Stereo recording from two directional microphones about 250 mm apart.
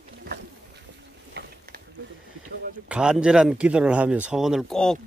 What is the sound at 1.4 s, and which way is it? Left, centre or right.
Mechanisms, right.